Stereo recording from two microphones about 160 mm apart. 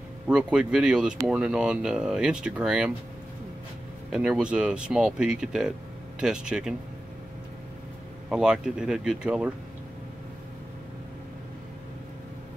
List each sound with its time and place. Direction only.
0.3 s speech: 5° right (ahead or behind)
4.1 s speech: 5° right (ahead or behind)
8.3 s speech: 5° right (ahead or behind)